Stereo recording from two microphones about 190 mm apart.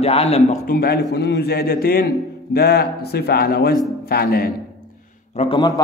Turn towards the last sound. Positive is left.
turn(degrees=25)  # may be behind; listen again after turning